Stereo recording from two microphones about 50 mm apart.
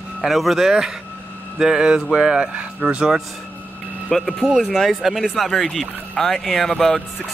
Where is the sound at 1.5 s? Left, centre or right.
Centre.